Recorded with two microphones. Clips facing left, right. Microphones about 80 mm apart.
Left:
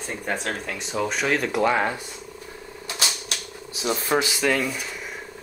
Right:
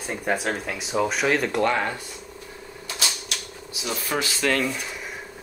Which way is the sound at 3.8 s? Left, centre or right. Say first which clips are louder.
Left 4 dB; left.